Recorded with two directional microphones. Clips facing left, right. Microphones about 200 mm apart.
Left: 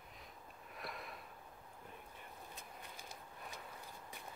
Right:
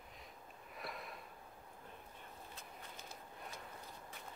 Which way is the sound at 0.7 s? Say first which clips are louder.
Even; centre (ahead or behind).